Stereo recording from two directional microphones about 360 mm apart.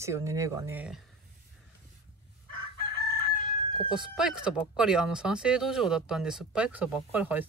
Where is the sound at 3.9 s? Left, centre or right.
Centre.